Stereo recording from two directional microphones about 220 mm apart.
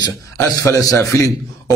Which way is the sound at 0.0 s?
15° left (ahead or behind).